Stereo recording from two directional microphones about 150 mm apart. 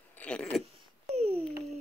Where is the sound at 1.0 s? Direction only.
45° right (ahead or behind).